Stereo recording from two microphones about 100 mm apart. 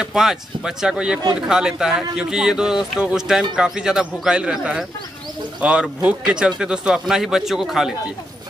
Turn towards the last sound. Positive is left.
turn(degrees=-5)  # may be behind; listen again after turning